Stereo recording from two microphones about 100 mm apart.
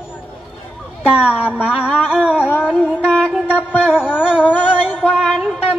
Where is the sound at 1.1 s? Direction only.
10° right (ahead or behind).